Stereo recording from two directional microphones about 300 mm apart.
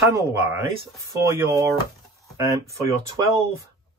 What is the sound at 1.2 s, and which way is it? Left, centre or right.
Speech, centre.